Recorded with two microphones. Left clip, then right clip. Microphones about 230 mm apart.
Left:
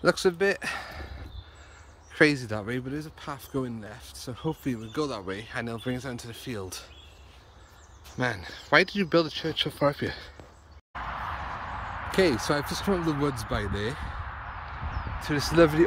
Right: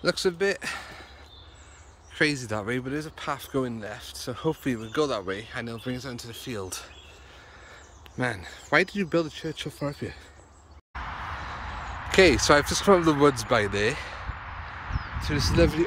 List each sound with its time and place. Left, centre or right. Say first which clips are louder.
0.0 s speech: left 1 dB; centre
2.1 s speech: left 3 dB; centre
8.2 s speech: even; centre
12.1 s speech: right 6 dB; centre
14.9 s a sound: right 1 dB; left
15.2 s speech: left 2 dB; centre